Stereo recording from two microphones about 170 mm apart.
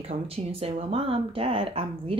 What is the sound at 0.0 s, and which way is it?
A woman's voice, 35° right (ahead or behind).